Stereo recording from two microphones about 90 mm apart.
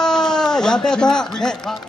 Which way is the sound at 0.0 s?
5° left (ahead or behind).